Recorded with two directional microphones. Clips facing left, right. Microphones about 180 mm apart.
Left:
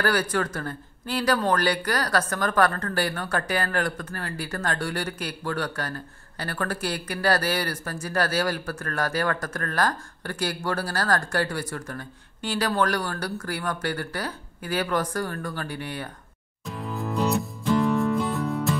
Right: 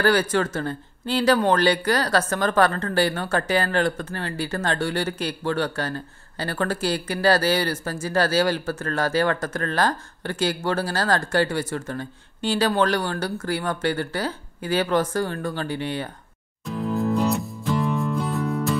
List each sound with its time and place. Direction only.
0.0 s speech: 25° right (ahead or behind)
16.9 s music: centre (ahead or behind)